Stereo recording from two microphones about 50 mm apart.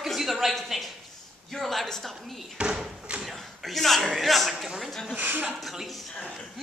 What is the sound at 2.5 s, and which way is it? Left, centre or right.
Slam, centre.